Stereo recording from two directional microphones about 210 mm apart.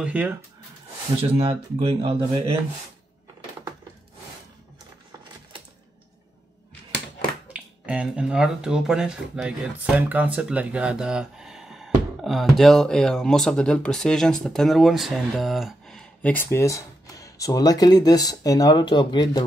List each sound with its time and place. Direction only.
0.0 s speech: 5° right (ahead or behind)
1.3 s speech: 25° right (ahead or behind)
7.5 s speech: 5° right (ahead or behind); by 19.4 s 20° left (ahead or behind)